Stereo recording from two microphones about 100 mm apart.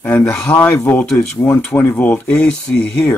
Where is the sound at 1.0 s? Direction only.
5° left (ahead or behind).